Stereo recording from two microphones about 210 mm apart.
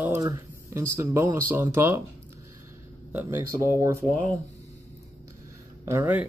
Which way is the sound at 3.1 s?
10° right (ahead or behind).